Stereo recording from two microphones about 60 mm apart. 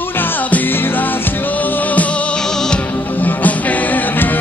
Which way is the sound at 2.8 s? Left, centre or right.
Left.